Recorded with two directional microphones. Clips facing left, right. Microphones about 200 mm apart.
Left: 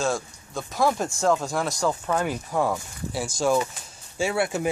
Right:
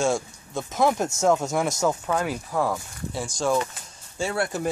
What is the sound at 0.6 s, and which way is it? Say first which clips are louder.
Speech: right 1 dB; 20° right (ahead or behind).